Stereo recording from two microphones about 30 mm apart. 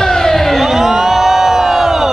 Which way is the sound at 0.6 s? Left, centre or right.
Centre.